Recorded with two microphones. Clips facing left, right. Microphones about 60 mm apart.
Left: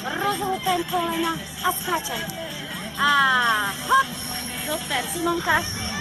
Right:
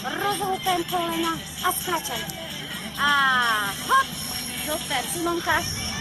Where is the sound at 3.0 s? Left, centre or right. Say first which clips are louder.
Left 2 dB; centre.